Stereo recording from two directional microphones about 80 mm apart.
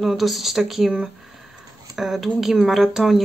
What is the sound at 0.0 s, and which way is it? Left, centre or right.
Speech, centre.